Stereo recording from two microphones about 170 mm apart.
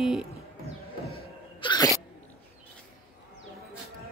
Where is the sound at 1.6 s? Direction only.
25° left (ahead or behind).